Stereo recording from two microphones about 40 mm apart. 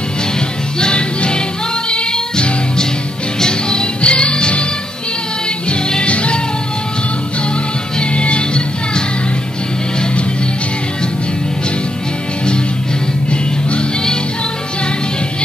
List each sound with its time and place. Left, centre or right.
0.7 s music: left
5.7 s music: left
8.0 s music: left
13.3 s music: left